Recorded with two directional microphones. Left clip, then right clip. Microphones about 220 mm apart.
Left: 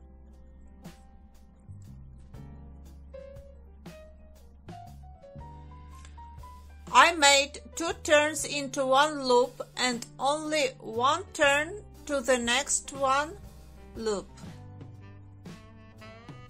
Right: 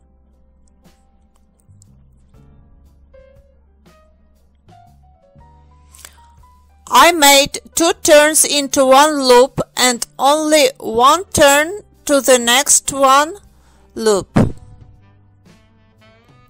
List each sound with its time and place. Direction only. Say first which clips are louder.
0.8 s music: left 1 dB; centre (ahead or behind)
3.9 s music: left 1 dB; centre (ahead or behind)
6.0 s music: right 13 dB; 50° right (ahead or behind)
6.8 s a woman's voice: right 11 dB; 50° right (ahead or behind)
14.8 s music: left 1 dB; centre (ahead or behind)